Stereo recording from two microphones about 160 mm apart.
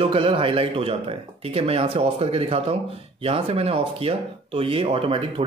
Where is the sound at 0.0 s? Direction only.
35° right (ahead or behind).